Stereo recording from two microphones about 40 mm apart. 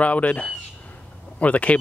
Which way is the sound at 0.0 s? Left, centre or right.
Left.